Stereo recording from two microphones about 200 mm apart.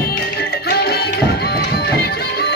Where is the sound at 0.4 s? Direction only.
50° left (ahead or behind).